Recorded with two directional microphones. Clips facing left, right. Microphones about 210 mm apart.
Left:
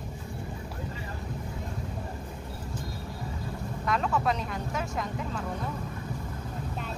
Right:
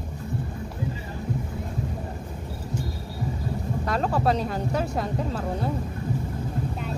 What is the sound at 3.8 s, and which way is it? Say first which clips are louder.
Speech: right 3 dB; 35° right (ahead or behind).